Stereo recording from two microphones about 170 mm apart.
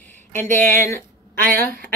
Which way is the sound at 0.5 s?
50° right (ahead or behind).